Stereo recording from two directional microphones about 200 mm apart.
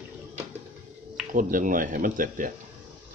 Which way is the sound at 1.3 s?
40° right (ahead or behind).